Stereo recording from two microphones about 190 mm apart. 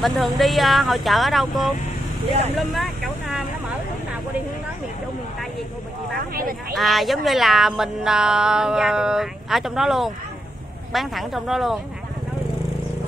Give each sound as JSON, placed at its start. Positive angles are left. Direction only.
{"t": 0.0, "sound": "speech", "side_deg": 0}
{"t": 6.1, "sound": "speech", "side_deg": -50}
{"t": 6.7, "sound": "speech", "side_deg": 0}